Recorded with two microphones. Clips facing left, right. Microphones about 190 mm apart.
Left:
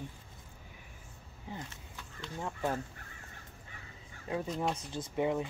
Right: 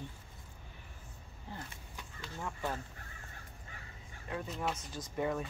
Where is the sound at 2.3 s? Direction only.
20° left (ahead or behind).